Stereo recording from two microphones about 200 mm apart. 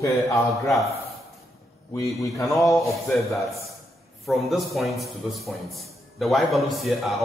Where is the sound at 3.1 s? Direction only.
Centre (ahead or behind).